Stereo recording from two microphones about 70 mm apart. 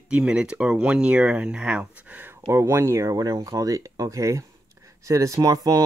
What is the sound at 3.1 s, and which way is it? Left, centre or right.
Speech, right.